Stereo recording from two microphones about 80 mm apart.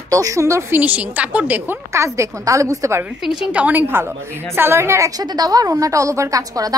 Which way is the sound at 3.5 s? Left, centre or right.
Right.